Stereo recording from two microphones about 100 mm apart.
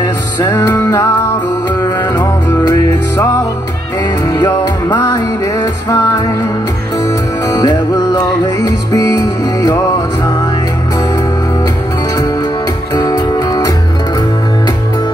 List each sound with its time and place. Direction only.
0.0 s music: 40° left (ahead or behind)
2.1 s music: 40° left (ahead or behind)
4.3 s music: 45° left (ahead or behind)
7.4 s music: 40° left (ahead or behind)
13.0 s music: 40° left (ahead or behind)